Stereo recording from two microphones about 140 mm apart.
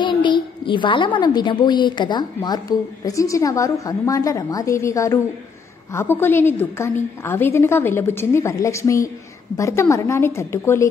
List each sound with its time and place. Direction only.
0.0 s a woman's voice: 35° left (ahead or behind); by 10.9 s 20° left (ahead or behind)